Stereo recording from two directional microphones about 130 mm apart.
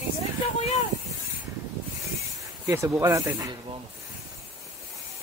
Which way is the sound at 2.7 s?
20° right (ahead or behind).